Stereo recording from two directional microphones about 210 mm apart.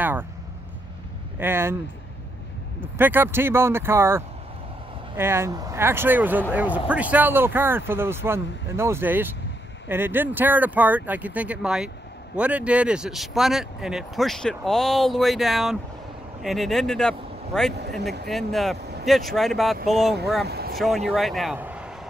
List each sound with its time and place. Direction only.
0.0 s speech: 10° right (ahead or behind)
1.4 s speech: 10° right (ahead or behind)
2.8 s speech: 10° right (ahead or behind)
20.4 s vehicle: 50° right (ahead or behind)
20.7 s a man's voice: centre (ahead or behind)